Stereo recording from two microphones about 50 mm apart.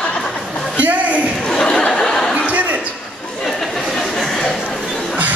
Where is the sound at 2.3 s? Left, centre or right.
Right.